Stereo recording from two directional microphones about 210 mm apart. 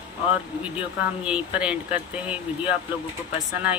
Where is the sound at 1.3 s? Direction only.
5° right (ahead or behind).